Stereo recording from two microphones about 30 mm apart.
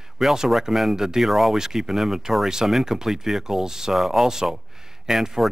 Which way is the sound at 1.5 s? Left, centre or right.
Centre.